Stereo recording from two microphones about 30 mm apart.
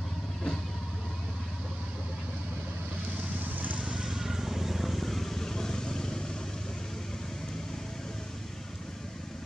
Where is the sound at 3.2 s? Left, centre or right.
Right.